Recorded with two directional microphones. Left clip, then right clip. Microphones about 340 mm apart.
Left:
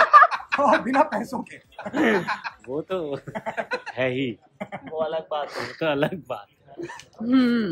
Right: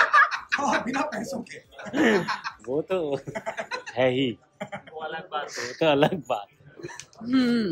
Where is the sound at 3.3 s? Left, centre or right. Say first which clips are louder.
Left 3 dB; centre.